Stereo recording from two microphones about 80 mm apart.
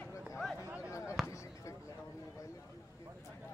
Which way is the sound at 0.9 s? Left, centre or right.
Left.